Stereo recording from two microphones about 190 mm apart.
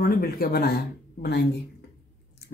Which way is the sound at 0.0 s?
55° left (ahead or behind).